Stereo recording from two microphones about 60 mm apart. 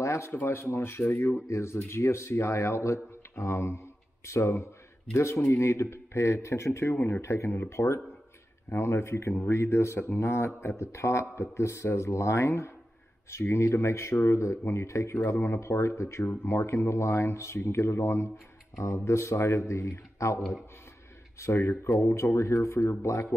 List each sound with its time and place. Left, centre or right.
0.0 s a sound: left
0.3 s speech: left
21.4 s speech: left